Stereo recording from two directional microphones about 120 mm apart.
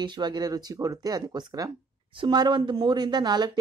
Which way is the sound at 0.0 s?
40° right (ahead or behind).